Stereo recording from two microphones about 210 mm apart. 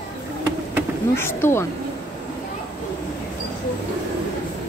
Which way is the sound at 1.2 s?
10° left (ahead or behind).